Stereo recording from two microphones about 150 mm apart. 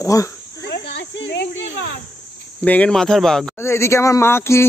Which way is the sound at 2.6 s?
10° left (ahead or behind).